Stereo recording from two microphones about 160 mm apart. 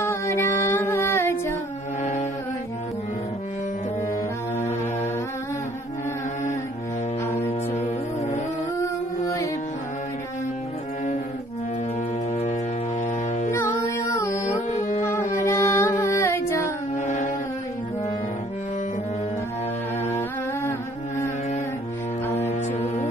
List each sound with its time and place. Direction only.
0.0 s music: 15° left (ahead or behind)
7.7 s music: 45° left (ahead or behind)
8.7 s music: 20° left (ahead or behind)
13.5 s music: 15° left (ahead or behind)
14.7 s carnatic music: 45° left (ahead or behind)
15.0 s music: 15° left (ahead or behind)
16.9 s a sound: 50° left (ahead or behind)
22.5 s music: 40° left (ahead or behind)